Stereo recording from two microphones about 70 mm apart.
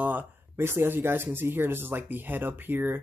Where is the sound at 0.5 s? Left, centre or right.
Right.